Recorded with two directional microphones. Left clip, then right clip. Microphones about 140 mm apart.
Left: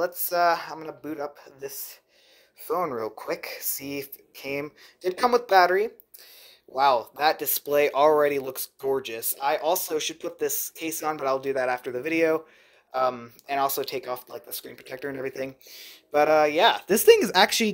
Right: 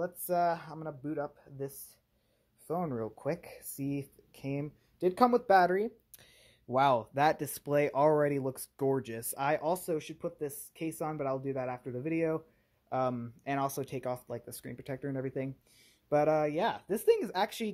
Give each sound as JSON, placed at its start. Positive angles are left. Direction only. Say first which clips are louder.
{"t": 0.0, "sound": "speech", "louder": "left 7 dB", "side_deg": -10}
{"t": 6.7, "sound": "speech", "louder": "left 6 dB", "side_deg": -45}
{"t": 9.8, "sound": "speech", "louder": "left 7 dB", "side_deg": -5}
{"t": 15.0, "sound": "speech", "louder": "left 7 dB", "side_deg": -5}